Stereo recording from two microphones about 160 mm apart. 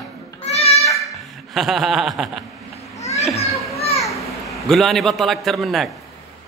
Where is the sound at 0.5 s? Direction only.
40° left (ahead or behind).